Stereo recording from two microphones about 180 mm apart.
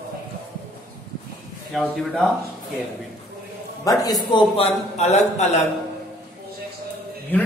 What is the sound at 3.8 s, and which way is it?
A man's voice, 20° left (ahead or behind).